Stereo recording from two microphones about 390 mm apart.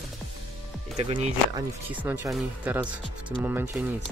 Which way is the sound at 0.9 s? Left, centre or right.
Centre.